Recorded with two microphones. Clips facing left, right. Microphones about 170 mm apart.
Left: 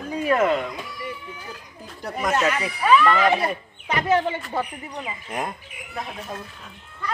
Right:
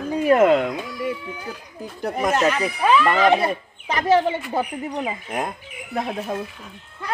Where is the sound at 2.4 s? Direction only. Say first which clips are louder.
Right 3 dB; 25° right (ahead or behind).